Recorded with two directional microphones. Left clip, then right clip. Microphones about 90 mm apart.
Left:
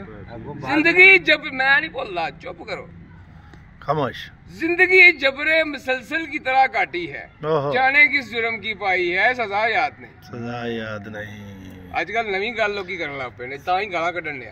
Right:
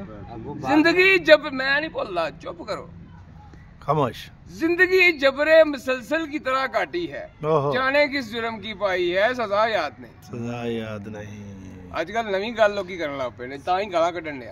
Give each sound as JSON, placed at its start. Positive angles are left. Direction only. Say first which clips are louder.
{"t": 0.6, "sound": "a man's voice", "louder": "left 4 dB", "side_deg": -55}
{"t": 3.8, "sound": "a man's voice", "louder": "even", "side_deg": -50}
{"t": 11.9, "sound": "a man's voice", "louder": "left 2 dB", "side_deg": -55}